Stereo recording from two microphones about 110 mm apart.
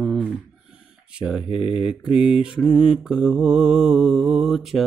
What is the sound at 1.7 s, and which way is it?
Mantra, 5° right (ahead or behind).